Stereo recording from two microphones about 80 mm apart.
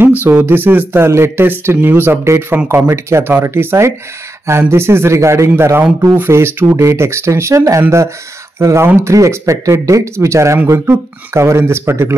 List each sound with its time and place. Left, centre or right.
0.2 s speech: right